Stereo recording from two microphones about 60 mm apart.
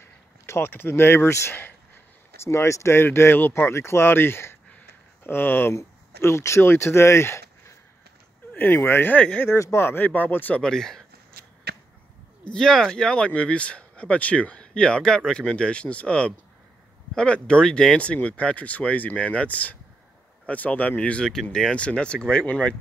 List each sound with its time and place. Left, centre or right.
0.0 s speech: left
2.4 s speech: left
5.8 s speech: left
8.5 s speech: left
9.1 s speech: left
9.6 s speech: left
10.6 s speech: centre
12.4 s speech: centre